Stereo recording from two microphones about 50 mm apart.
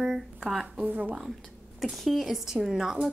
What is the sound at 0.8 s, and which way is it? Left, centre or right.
Speech, right.